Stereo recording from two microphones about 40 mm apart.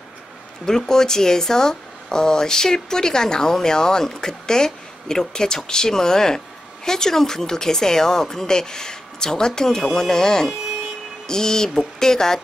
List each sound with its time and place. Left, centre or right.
0.7 s speech: centre